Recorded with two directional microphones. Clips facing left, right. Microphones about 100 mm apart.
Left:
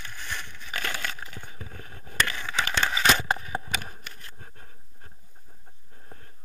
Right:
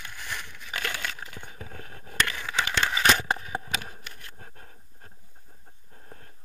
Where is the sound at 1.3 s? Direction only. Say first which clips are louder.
Right 1 dB; 45° right (ahead or behind).